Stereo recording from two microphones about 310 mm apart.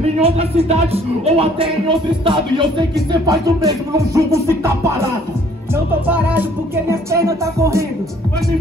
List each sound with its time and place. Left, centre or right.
0.2 s speech: centre
6.0 s music: centre
6.9 s speech: centre